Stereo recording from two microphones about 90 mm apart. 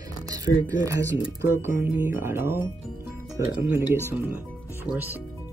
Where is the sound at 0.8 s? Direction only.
35° right (ahead or behind).